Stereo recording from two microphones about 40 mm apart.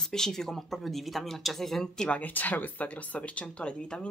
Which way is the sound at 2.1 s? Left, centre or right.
Left.